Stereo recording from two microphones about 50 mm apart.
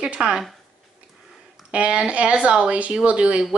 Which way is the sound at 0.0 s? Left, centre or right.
Centre.